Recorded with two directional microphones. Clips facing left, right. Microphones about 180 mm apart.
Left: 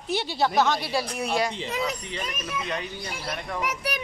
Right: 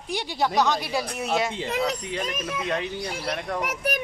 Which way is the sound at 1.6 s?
55° right (ahead or behind).